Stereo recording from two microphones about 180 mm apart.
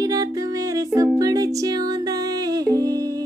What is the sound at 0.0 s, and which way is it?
Music, 20° right (ahead or behind).